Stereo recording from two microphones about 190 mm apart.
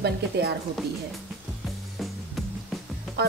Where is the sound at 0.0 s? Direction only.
60° right (ahead or behind).